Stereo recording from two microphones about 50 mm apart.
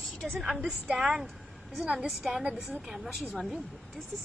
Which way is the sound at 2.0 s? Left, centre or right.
Centre.